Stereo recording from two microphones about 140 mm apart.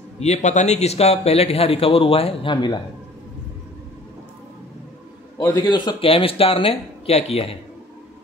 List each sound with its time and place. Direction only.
0.2 s a man's voice: 55° left (ahead or behind); by 2.8 s 30° left (ahead or behind)
5.7 s speech: 35° left (ahead or behind)